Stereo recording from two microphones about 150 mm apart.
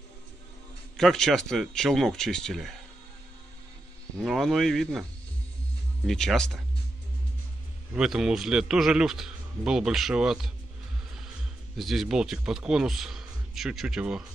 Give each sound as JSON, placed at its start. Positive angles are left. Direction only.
{"t": 0.9, "sound": "a man's voice", "side_deg": 0}
{"t": 4.2, "sound": "a man's voice", "side_deg": 0}
{"t": 6.0, "sound": "a man's voice", "side_deg": 5}
{"t": 7.9, "sound": "a man's voice", "side_deg": -5}
{"t": 11.7, "sound": "a man's voice", "side_deg": 0}